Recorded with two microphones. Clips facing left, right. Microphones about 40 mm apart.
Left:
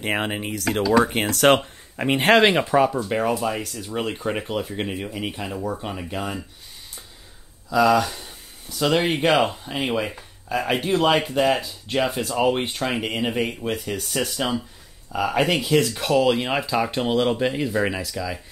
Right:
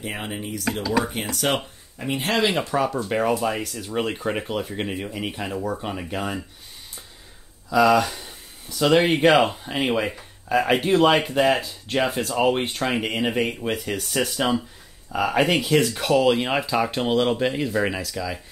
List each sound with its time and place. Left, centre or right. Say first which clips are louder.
0.0 s speech: left 6 dB; left
2.5 s speech: left 4 dB; left
2.9 s speech: even; centre
7.7 s speech: right 1 dB; centre